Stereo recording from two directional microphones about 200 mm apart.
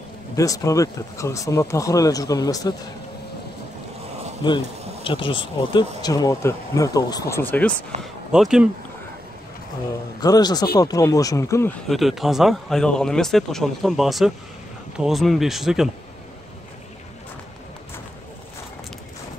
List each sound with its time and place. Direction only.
0.4 s speech: 15° left (ahead or behind)
4.4 s a man's voice: 25° left (ahead or behind); by 7.7 s 10° left (ahead or behind)
8.0 s speech: centre (ahead or behind)
10.2 s a man's voice: 20° left (ahead or behind)
11.9 s speech: centre (ahead or behind)